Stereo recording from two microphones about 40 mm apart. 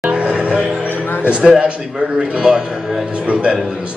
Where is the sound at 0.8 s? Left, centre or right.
Left.